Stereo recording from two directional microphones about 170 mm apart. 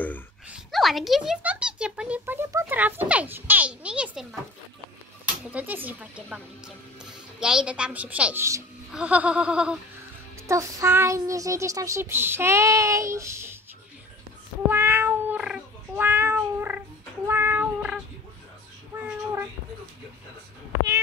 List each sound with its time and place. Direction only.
0.5 s speech: centre (ahead or behind)
5.5 s speech: 10° right (ahead or behind)
10.5 s speech: 15° right (ahead or behind)
14.7 s cat: 10° right (ahead or behind)
18.9 s child singing: 15° right (ahead or behind)